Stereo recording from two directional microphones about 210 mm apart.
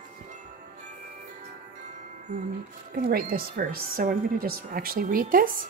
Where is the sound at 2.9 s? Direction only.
45° right (ahead or behind).